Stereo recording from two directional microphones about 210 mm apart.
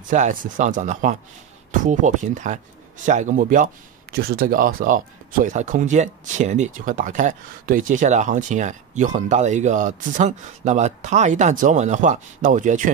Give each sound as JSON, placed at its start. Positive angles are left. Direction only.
{"t": 0.1, "sound": "speech", "side_deg": -40}